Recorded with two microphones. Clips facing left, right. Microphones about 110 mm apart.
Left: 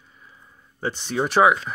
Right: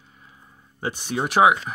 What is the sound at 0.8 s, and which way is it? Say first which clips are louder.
Speech: left 1 dB; 10° right (ahead or behind).